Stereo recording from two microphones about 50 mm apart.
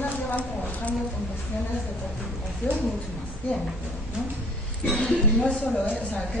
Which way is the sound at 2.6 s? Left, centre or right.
Left.